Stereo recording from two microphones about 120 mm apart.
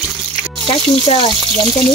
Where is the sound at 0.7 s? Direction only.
50° left (ahead or behind).